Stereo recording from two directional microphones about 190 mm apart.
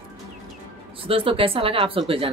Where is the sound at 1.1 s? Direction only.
30° right (ahead or behind).